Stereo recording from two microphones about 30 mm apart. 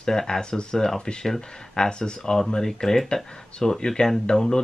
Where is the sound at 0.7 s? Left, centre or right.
Centre.